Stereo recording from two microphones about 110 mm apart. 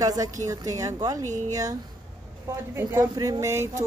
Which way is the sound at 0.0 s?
35° right (ahead or behind).